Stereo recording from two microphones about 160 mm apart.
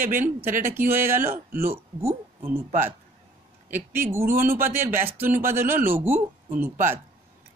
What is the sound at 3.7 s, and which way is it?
Speech, 15° right (ahead or behind).